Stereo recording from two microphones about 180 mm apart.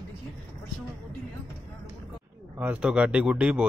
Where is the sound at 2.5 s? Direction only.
10° right (ahead or behind).